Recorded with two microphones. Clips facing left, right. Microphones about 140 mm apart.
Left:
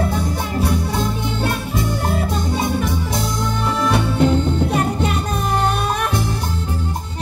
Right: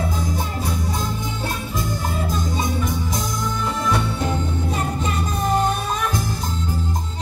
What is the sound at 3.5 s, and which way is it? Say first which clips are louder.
Music: left 4 dB; 65° left (ahead or behind).